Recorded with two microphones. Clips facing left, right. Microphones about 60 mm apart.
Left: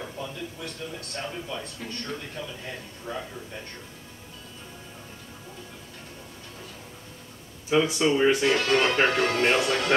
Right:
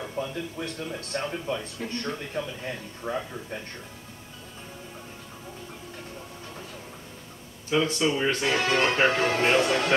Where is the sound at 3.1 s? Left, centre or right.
Right.